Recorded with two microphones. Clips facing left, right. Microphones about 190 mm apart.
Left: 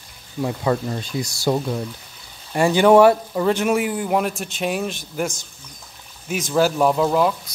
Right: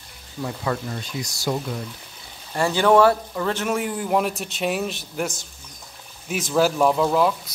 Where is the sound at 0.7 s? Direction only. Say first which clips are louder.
Left 5 dB; 20° left (ahead or behind).